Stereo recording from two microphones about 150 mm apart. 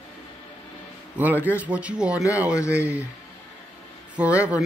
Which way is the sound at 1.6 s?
10° right (ahead or behind).